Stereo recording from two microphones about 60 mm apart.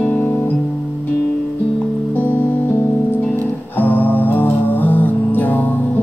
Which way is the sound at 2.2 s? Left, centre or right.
Left.